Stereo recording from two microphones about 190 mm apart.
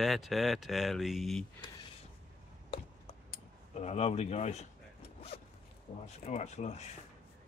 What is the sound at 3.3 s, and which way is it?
Speech, 35° left (ahead or behind).